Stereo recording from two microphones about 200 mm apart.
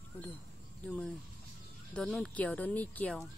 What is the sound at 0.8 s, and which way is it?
Speech, 5° left (ahead or behind).